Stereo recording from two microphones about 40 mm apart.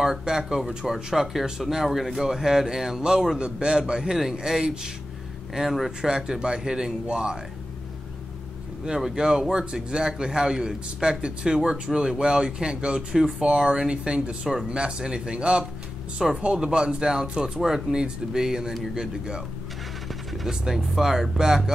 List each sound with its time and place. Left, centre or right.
0.0 s a man's voice: centre
8.8 s a man's voice: centre
16.2 s speech: centre
16.5 s a man's voice: right
17.6 s speech: centre
20.4 s speech: centre